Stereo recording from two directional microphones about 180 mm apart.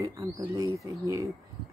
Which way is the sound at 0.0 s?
20° right (ahead or behind).